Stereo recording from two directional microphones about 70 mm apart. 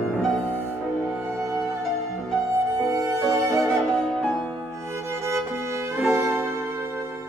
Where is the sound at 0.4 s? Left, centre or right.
Right.